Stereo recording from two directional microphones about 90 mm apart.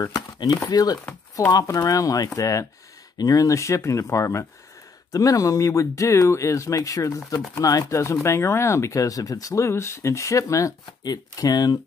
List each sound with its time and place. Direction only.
0.0 s speech: 50° left (ahead or behind)